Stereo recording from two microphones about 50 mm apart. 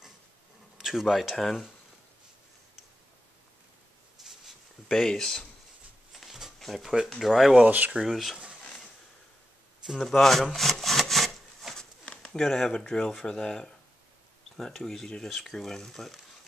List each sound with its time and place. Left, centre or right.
0.7 s speech: centre
4.2 s a sound: centre
4.8 s speech: centre
6.1 s a sound: centre
6.6 s speech: centre
7.5 s speech: right
8.0 s speech: centre
9.8 s wood: centre
11.7 s a sound: left
12.4 s speech: centre